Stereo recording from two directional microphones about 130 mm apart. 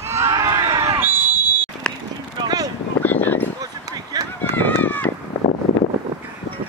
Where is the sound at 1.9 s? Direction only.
5° left (ahead or behind).